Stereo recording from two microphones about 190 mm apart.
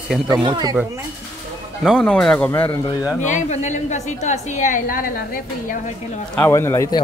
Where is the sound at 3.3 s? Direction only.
40° left (ahead or behind).